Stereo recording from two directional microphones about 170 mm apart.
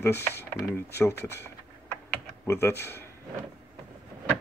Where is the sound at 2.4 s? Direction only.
15° left (ahead or behind).